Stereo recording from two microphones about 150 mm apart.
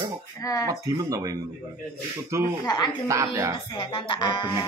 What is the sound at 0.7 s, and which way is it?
Speech, 25° right (ahead or behind).